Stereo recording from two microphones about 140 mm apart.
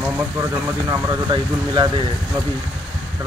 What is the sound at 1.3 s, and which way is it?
Speech, 35° right (ahead or behind).